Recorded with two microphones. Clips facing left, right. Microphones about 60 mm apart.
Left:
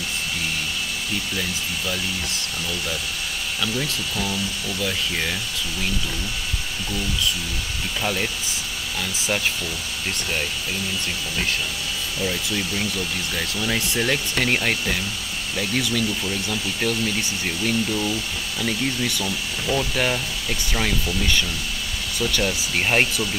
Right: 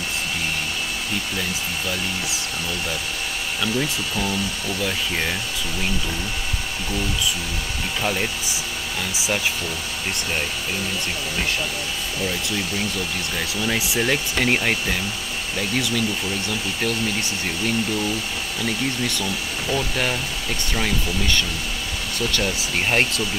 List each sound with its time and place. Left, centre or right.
3.6 s speech: centre
8.0 s speech: centre
12.2 s speech: centre